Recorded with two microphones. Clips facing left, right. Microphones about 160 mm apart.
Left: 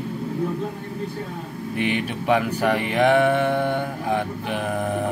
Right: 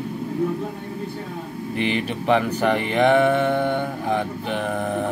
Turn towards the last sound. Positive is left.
turn(degrees=5)  # may be behind; listen again after turning